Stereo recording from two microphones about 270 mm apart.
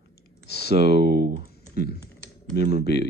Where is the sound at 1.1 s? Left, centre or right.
Right.